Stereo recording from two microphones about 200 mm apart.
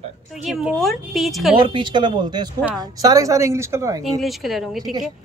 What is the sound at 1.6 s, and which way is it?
A woman's voice, 25° right (ahead or behind).